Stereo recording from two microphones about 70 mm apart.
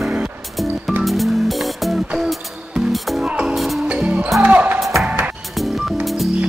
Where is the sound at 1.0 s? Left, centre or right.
Centre.